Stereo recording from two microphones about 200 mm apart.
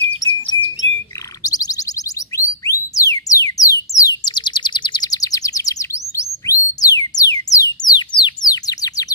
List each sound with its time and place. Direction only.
0.1 s bird: 25° left (ahead or behind)
1.4 s a sound: 20° left (ahead or behind)
2.3 s music: 15° left (ahead or behind)